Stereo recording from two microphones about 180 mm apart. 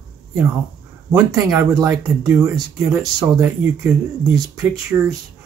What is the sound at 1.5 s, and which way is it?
Speech, 20° right (ahead or behind).